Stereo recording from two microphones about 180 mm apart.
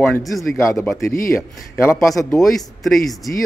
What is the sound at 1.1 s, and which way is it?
Speech, 50° left (ahead or behind).